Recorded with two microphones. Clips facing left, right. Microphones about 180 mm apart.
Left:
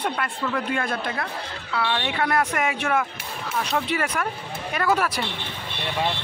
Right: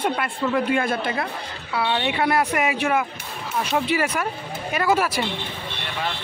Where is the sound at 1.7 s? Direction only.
25° right (ahead or behind).